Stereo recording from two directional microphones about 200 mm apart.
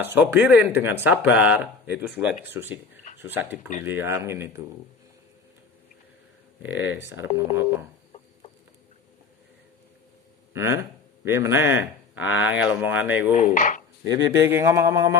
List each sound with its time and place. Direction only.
0.0 s speech: 10° right (ahead or behind)
6.6 s speech: 10° right (ahead or behind)
10.5 s speech: 15° right (ahead or behind)
13.3 s speech: 40° left (ahead or behind)
14.0 s speech: 15° right (ahead or behind)